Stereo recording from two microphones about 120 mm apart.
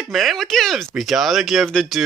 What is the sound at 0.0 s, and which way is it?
Speech, centre (ahead or behind).